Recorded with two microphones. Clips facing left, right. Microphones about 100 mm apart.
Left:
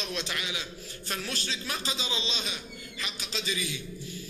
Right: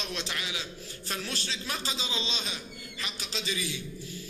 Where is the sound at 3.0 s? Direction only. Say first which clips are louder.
Left 1 dB; 35° right (ahead or behind).